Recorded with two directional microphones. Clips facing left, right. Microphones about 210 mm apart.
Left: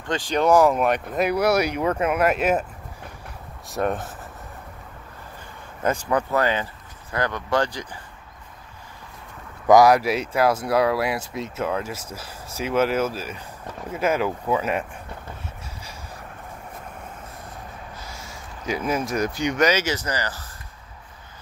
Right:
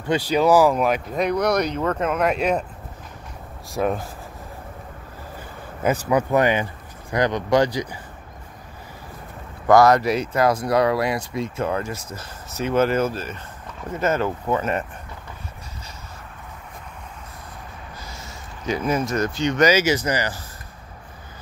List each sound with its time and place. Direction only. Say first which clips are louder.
0.0 s speech: right 3 dB; 5° right (ahead or behind)
3.7 s speech: right 1 dB; centre (ahead or behind)
5.8 s speech: right 3 dB; 10° right (ahead or behind)
9.7 s speech: even; 15° left (ahead or behind)
18.2 s speech: right 3 dB; 5° left (ahead or behind)
19.6 s speech: right 4 dB; 5° right (ahead or behind)